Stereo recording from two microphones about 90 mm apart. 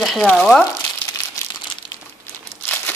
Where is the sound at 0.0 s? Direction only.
Centre (ahead or behind).